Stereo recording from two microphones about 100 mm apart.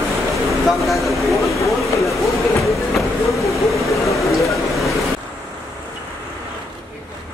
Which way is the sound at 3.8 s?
30° left (ahead or behind).